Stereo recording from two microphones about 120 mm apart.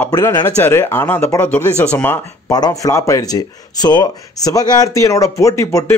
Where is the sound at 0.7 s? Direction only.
20° left (ahead or behind).